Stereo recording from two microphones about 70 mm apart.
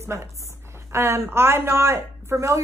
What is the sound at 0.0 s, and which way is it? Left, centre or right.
A woman's voice, right.